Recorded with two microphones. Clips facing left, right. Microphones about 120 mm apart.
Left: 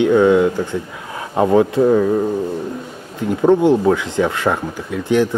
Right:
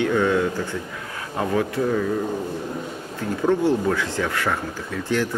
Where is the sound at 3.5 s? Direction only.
20° left (ahead or behind).